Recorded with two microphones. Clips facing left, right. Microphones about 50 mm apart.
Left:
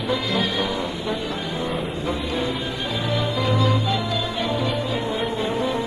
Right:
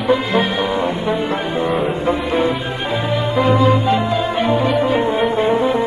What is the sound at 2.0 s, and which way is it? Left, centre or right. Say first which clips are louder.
Music: right 7 dB; right.